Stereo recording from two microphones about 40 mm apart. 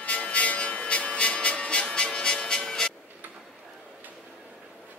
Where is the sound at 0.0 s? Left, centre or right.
Left; by 2.9 s centre.